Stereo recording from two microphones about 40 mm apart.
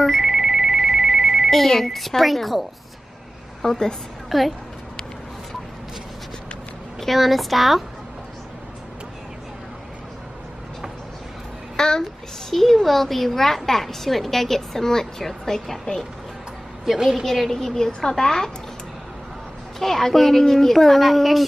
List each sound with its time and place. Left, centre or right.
0.0 s ringtone: centre
0.3 s ringtone: centre
1.5 s speech: centre
3.6 s a woman's voice: centre
4.3 s speech: centre
7.0 s speech: centre
11.7 s a sound: centre
12.0 s a woman's voice: centre
16.8 s a woman's voice: centre
17.2 s a woman's voice: centre
19.8 s a woman's voice: centre